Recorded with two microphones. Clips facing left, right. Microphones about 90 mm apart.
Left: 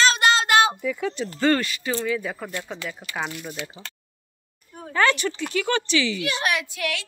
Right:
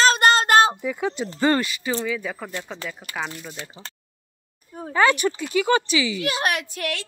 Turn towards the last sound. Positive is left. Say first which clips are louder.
# even
turn(degrees=-40)  # may be behind; listen again after turning